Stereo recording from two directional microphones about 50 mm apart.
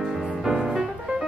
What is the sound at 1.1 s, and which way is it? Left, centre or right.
Music, right.